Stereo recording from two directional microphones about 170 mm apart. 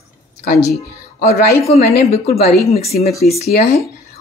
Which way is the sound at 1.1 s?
60° left (ahead or behind).